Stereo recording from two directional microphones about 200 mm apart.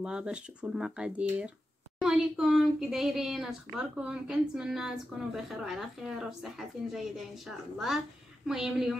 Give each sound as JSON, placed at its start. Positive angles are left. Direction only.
{"t": 0.0, "sound": "speech", "side_deg": -5}